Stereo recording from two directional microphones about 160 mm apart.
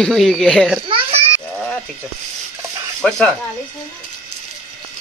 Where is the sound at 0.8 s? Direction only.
35° right (ahead or behind).